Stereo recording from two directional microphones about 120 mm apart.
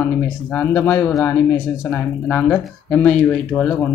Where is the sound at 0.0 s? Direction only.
15° left (ahead or behind).